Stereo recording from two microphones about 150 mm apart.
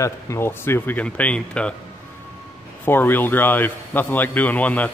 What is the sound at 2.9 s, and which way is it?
A man's voice, 15° left (ahead or behind).